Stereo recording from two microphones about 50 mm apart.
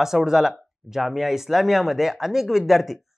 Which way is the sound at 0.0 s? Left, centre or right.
Centre.